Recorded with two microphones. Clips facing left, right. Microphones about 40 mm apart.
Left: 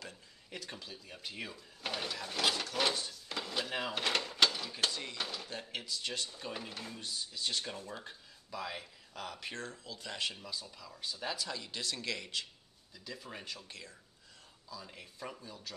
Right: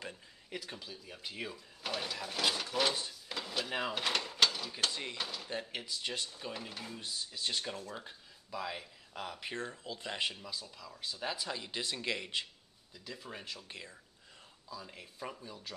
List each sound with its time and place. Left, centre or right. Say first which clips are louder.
0.5 s speech: right 1 dB; centre
5.6 s speech: even; centre
6.3 s speech: even; centre
7.0 s speech: even; centre
10.4 s speech: even; centre
11.3 s speech: right 1 dB; right
12.9 s speech: even; centre
13.7 s speech: right 2 dB; right
14.9 s speech: right 1 dB; centre